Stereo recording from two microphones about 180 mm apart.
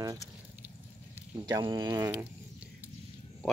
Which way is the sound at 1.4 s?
20° right (ahead or behind).